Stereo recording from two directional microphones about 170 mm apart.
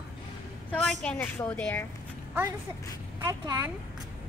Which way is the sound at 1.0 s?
5° left (ahead or behind).